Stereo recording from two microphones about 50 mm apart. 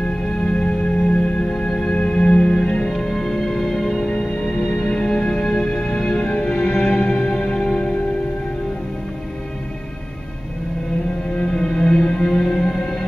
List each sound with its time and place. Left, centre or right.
0.4 s music: left
4.1 s music: left
6.2 s music: left
11.5 s music: centre